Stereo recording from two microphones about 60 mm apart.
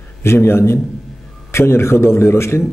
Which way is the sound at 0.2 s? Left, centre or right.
Left.